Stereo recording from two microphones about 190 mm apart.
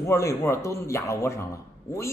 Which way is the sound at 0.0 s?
15° left (ahead or behind).